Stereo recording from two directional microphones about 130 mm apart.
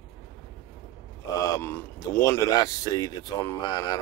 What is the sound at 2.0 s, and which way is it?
Speech, 25° left (ahead or behind).